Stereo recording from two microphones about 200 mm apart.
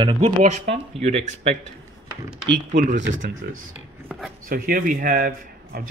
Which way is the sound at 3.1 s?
40° right (ahead or behind).